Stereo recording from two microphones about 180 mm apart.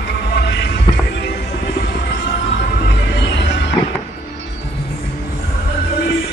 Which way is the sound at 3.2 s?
75° left (ahead or behind).